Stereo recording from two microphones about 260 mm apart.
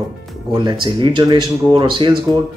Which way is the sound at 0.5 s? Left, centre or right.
Centre.